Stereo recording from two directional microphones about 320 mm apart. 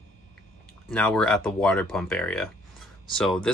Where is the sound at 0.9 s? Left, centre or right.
Centre.